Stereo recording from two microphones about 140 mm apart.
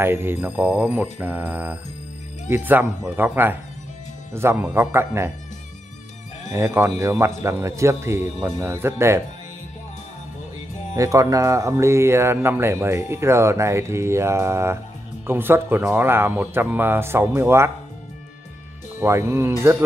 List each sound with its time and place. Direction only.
0.0 s speech: 15° right (ahead or behind)
6.5 s speech: 20° right (ahead or behind)
11.0 s speech: 25° right (ahead or behind)
18.9 s speech: 20° right (ahead or behind)